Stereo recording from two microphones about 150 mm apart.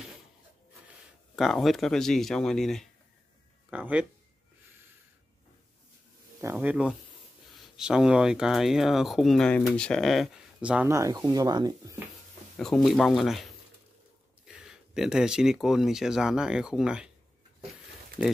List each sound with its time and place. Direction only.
1.3 s speech: centre (ahead or behind)
3.7 s speech: 10° right (ahead or behind)
6.5 s speech: 5° right (ahead or behind)
10.9 s speech: 20° right (ahead or behind)
12.5 s speech: 5° left (ahead or behind)
14.5 s speech: 5° right (ahead or behind)
18.2 s speech: 5° right (ahead or behind)